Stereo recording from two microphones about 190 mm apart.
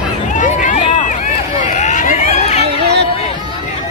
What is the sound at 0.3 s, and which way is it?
Run, 40° left (ahead or behind).